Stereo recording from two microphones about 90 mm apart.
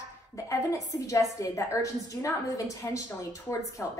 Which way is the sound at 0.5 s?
40° left (ahead or behind).